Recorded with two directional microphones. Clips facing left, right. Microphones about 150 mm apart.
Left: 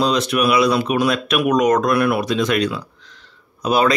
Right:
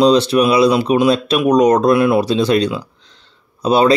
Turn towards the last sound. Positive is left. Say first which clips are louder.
# right 4 dB
turn(degrees=-30)  # may be behind; listen again after turning